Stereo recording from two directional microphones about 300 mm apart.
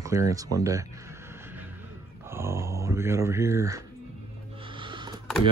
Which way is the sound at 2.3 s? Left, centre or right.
Centre.